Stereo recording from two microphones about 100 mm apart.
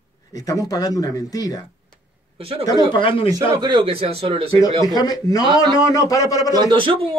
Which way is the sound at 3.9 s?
75° right (ahead or behind).